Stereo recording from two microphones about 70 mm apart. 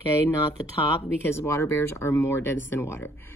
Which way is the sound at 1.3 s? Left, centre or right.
Left.